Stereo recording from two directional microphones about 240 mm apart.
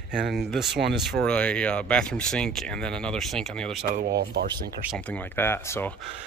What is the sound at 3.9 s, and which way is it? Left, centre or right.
Speech, right.